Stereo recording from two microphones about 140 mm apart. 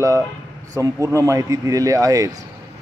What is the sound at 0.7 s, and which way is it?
Speech, 25° right (ahead or behind).